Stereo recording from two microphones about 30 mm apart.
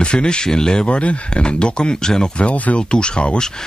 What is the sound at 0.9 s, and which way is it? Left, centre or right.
Speech, left.